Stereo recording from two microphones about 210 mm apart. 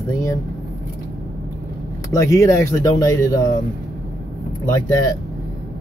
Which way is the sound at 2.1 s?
15° left (ahead or behind).